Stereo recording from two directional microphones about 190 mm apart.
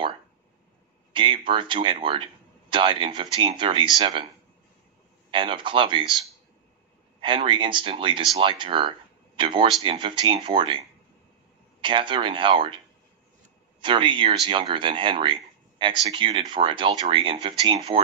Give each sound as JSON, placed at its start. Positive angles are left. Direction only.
{"t": 1.1, "sound": "speech", "side_deg": -25}
{"t": 5.3, "sound": "speech", "side_deg": -25}
{"t": 7.2, "sound": "speech", "side_deg": -25}
{"t": 11.8, "sound": "speech", "side_deg": -25}